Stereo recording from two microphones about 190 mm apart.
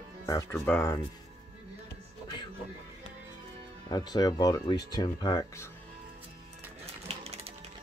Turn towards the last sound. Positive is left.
turn(degrees=-35)  # may be behind; listen again after turning